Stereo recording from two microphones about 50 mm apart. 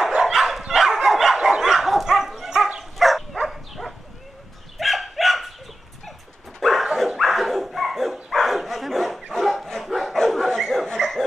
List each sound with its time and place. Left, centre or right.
0.1 s dog: centre
3.0 s a sound: centre
4.7 s dog: centre
6.6 s dog: centre
10.1 s bow-wow: centre
10.7 s a sound: centre